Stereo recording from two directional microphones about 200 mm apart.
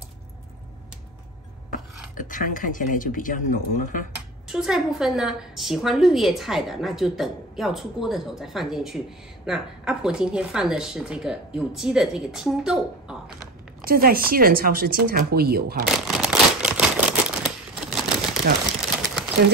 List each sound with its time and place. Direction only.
2.1 s a man's voice: 40° left (ahead or behind)
4.5 s a woman's voice: 5° right (ahead or behind)
13.8 s speech: 50° right (ahead or behind)
15.9 s a sound: centre (ahead or behind)